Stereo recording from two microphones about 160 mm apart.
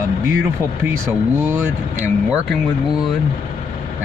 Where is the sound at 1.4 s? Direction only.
15° right (ahead or behind).